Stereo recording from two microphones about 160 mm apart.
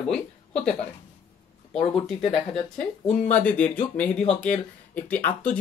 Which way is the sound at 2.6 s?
45° left (ahead or behind).